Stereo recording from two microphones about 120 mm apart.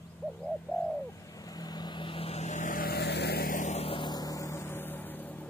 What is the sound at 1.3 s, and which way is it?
Vehicle, 30° left (ahead or behind).